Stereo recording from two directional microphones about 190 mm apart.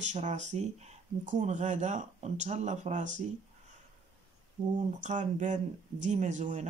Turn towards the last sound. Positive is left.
turn(degrees=-40)  # may be behind; listen again after turning